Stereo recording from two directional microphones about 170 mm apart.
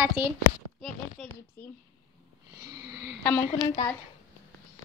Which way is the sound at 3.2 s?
10° left (ahead or behind).